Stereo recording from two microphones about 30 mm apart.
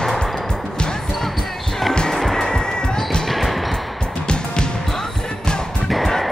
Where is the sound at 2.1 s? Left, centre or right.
Centre.